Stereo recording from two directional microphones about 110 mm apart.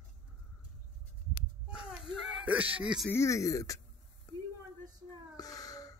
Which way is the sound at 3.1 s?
25° left (ahead or behind).